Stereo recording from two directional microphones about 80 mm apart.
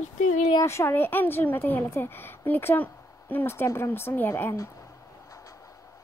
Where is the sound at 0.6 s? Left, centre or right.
Left.